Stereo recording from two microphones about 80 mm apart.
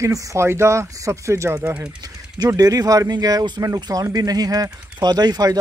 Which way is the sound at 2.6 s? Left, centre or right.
Right.